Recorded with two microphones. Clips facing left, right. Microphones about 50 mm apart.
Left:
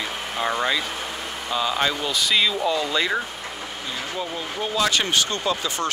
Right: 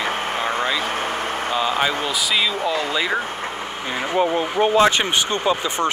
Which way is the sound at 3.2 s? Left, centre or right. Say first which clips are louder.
Right 6 dB; right.